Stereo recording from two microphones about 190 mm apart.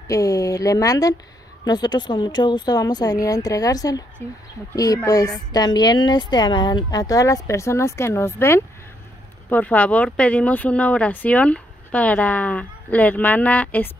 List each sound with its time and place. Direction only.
0.1 s a woman's voice: 20° left (ahead or behind)